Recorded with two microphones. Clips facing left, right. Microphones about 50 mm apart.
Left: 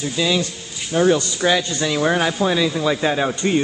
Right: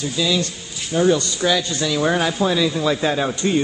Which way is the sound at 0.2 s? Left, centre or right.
Left.